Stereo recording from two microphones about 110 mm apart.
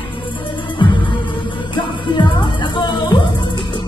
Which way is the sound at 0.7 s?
45° left (ahead or behind).